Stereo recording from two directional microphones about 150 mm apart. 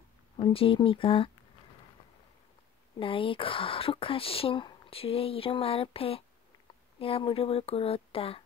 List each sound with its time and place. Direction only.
0.4 s speech: 35° left (ahead or behind)
3.0 s speech: 35° left (ahead or behind)